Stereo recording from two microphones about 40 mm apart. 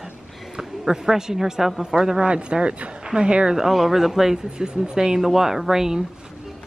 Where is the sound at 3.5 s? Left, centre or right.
Centre.